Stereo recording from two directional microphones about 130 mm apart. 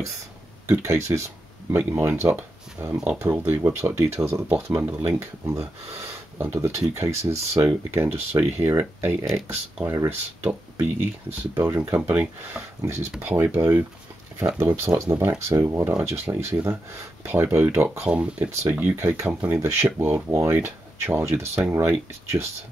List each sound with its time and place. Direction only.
0.7 s speech: 20° right (ahead or behind)
9.2 s speech: centre (ahead or behind)
9.8 s speech: 15° right (ahead or behind)
17.7 s speech: 10° right (ahead or behind)